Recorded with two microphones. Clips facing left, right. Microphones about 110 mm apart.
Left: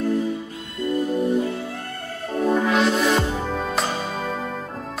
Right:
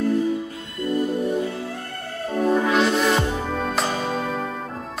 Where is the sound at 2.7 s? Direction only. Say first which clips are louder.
Even; centre (ahead or behind).